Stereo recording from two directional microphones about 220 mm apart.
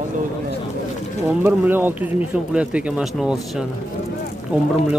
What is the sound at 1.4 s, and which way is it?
Speech, 10° right (ahead or behind).